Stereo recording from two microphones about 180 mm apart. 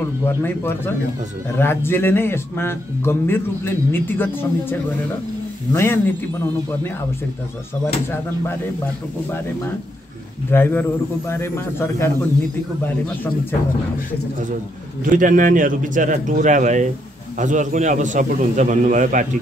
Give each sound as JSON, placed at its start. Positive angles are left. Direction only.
{"t": 0.2, "sound": "speech", "side_deg": 10}
{"t": 10.5, "sound": "speech", "side_deg": 10}
{"t": 15.0, "sound": "a man's voice", "side_deg": -50}